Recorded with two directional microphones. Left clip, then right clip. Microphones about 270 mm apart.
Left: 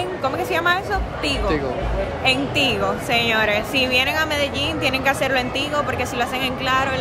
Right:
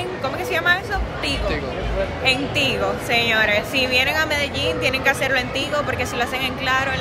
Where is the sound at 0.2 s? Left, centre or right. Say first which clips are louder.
Left 1 dB; centre.